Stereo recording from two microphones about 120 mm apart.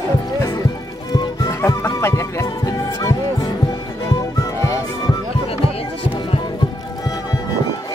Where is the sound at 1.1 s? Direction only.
35° left (ahead or behind).